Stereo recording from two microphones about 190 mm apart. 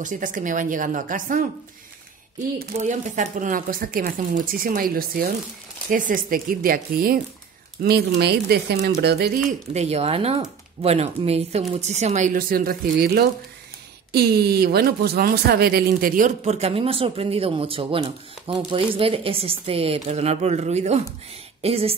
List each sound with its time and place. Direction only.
0.0 s speech: 45° right (ahead or behind)
9.8 s a woman's voice: 35° right (ahead or behind)